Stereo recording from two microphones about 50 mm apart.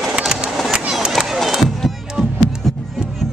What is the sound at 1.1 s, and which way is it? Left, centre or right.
Crowd, centre.